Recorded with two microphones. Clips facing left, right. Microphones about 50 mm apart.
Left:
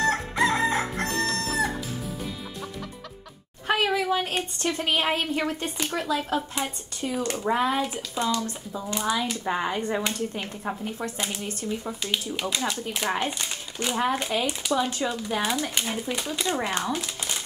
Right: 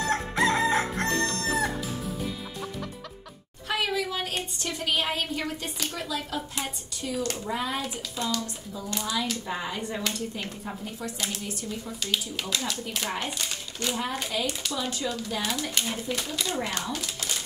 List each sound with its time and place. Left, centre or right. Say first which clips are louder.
0.0 s crowing: left 2 dB; centre
3.6 s a sound: left 4 dB; left
4.6 s speech: left 4 dB; left
9.4 s speech: left 5 dB; left
9.9 s speech: left 3 dB; left
13.9 s speech: left 7 dB; left